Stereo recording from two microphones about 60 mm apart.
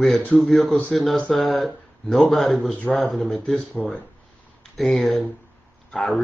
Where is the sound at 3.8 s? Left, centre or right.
Left.